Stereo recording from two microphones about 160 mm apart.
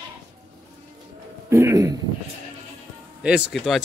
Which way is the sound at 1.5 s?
15° right (ahead or behind).